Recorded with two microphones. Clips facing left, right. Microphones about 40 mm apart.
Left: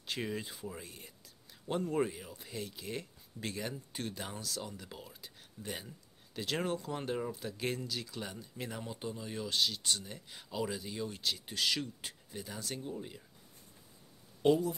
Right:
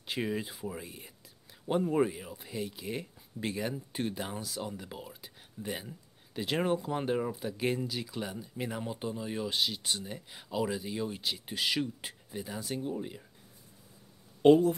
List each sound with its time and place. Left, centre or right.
0.0 s speech: centre
14.4 s speech: right